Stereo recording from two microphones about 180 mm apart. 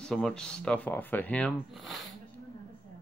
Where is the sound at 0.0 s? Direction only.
5° left (ahead or behind).